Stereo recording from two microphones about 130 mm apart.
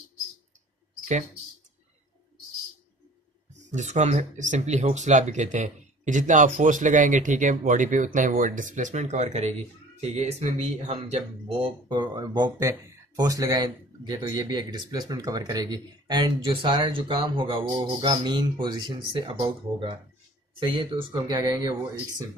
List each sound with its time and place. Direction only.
3.7 s speech: 65° right (ahead or behind); by 11.7 s 50° right (ahead or behind)
11.9 s speech: 30° right (ahead or behind)